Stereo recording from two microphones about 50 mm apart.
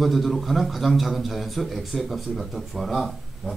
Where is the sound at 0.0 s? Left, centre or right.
Centre.